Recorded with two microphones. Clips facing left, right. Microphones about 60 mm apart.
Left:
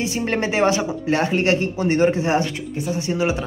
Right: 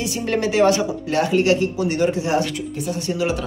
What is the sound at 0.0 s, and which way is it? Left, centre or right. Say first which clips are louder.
Speech: even; left.